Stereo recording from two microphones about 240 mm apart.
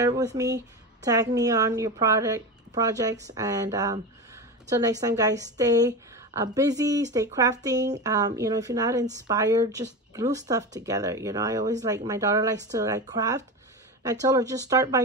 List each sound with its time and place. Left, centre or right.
0.0 s a woman's voice: centre